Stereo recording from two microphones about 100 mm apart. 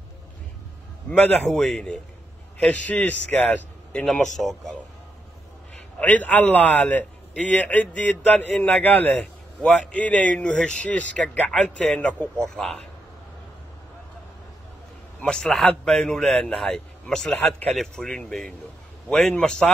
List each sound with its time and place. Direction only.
1.1 s a man's voice: 5° left (ahead or behind)
5.9 s a man's voice: 15° left (ahead or behind)
15.1 s a man's voice: 10° left (ahead or behind)
17.7 s a man's voice: 5° left (ahead or behind)